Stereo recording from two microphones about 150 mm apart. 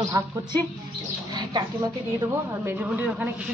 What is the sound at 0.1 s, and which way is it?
Speech, 25° right (ahead or behind).